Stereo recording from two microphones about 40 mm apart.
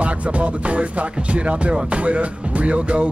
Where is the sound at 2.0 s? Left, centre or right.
Right.